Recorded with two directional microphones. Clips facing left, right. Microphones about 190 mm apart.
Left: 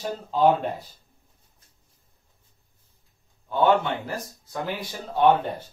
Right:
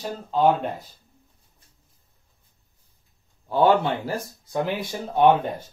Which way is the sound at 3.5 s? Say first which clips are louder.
Right 2 dB; 30° right (ahead or behind).